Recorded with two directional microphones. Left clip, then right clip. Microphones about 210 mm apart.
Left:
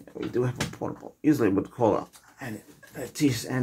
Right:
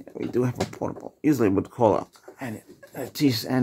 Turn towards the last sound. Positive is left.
turn(degrees=-45)  # may be behind; listen again after turning